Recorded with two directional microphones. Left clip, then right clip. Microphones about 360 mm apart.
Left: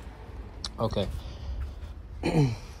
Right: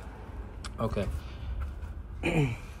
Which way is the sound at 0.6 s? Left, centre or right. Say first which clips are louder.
Left 3 dB; centre.